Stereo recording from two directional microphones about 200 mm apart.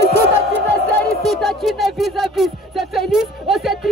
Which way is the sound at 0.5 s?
5° left (ahead or behind).